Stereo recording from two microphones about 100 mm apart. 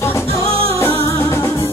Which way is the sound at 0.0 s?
25° left (ahead or behind).